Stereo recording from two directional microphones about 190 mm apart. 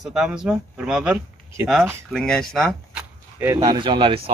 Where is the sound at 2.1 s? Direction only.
5° left (ahead or behind).